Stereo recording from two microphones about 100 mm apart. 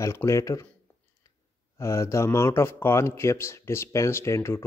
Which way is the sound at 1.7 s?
30° left (ahead or behind).